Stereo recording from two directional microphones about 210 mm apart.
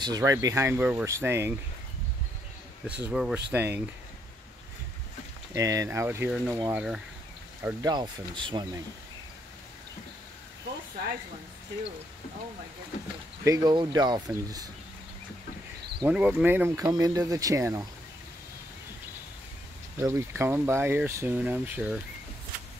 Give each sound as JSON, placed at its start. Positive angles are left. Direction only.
{"t": 0.0, "sound": "speech", "side_deg": -15}
{"t": 3.0, "sound": "speech", "side_deg": -5}
{"t": 5.5, "sound": "speech", "side_deg": -15}
{"t": 7.6, "sound": "speech", "side_deg": -20}
{"t": 13.4, "sound": "speech", "side_deg": -15}
{"t": 16.1, "sound": "speech", "side_deg": -5}
{"t": 20.0, "sound": "speech", "side_deg": -10}